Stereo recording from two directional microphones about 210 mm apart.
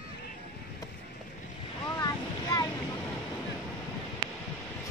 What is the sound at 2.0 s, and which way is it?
Boat, 15° left (ahead or behind).